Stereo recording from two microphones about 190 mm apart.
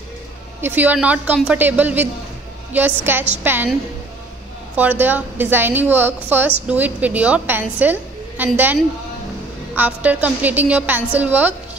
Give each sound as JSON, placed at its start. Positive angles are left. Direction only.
{"t": 0.6, "sound": "a woman's voice", "side_deg": -10}
{"t": 4.7, "sound": "a woman's voice", "side_deg": -10}
{"t": 9.8, "sound": "a woman's voice", "side_deg": -5}